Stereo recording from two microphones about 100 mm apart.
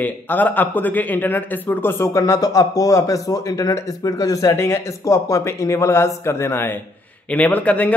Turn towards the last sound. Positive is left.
turn(degrees=15)  # may be behind; listen again after turning